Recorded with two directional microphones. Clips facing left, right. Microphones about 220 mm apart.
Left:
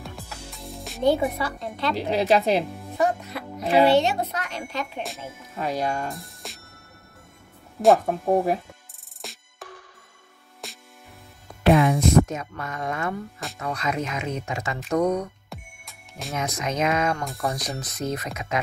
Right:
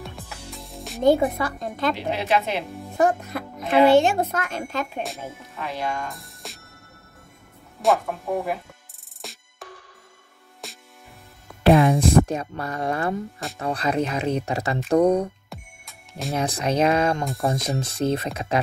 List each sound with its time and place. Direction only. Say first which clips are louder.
0.0 s music: right 1 dB; centre (ahead or behind)
1.0 s a woman's voice: right 3 dB; 45° right (ahead or behind)
2.0 s a woman's voice: left 3 dB; 35° left (ahead or behind)
3.0 s a woman's voice: right 3 dB; 50° right (ahead or behind)
5.6 s a woman's voice: left 3 dB; 40° left (ahead or behind)
6.0 s music: left 2 dB; centre (ahead or behind)
8.1 s a woman's voice: left 5 dB; 30° left (ahead or behind)
9.2 s music: even; centre (ahead or behind)
11.6 s music: right 2 dB; 30° right (ahead or behind)
12.0 s speech: right 1 dB; 35° right (ahead or behind)
15.5 s music: even; centre (ahead or behind)
16.3 s speech: right 4 dB; 30° right (ahead or behind)